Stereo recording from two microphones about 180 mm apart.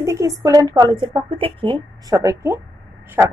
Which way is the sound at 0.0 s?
15° right (ahead or behind).